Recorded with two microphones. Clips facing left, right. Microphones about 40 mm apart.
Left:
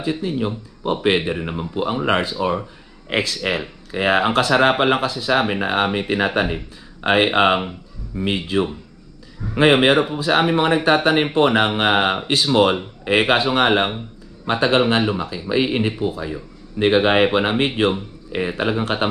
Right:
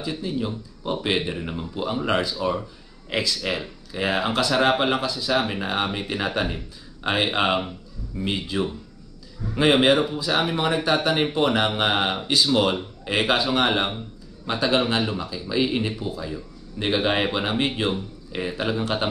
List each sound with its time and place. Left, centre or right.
0.0 s speech: left